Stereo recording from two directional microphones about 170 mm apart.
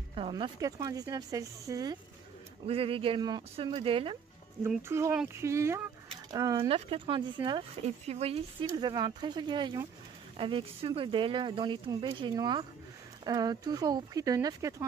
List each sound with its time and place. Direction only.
0.1 s speech: 30° right (ahead or behind)
2.6 s speech: 35° right (ahead or behind)
4.6 s speech: 15° right (ahead or behind)
6.7 s speech: 30° right (ahead or behind)